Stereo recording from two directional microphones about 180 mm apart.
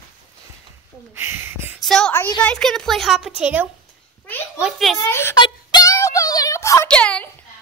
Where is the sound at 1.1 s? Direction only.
10° right (ahead or behind).